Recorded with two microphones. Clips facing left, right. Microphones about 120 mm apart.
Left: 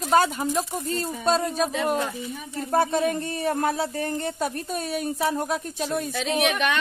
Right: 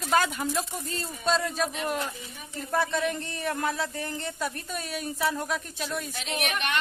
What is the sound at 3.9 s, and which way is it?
A woman's voice, 50° left (ahead or behind).